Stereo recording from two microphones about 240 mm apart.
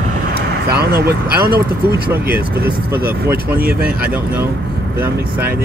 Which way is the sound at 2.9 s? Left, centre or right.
Centre.